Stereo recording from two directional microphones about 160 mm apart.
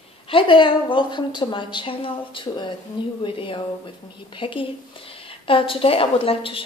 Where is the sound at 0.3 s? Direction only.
35° left (ahead or behind).